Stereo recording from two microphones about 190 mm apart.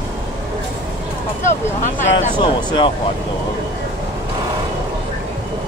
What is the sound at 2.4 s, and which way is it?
Speech, 25° left (ahead or behind).